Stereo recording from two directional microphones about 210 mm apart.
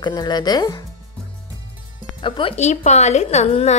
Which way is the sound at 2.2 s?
25° left (ahead or behind).